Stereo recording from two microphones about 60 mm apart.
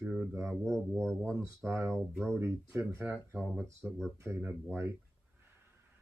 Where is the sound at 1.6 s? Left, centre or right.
Right.